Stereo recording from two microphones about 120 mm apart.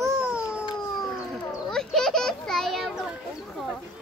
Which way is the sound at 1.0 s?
5° left (ahead or behind).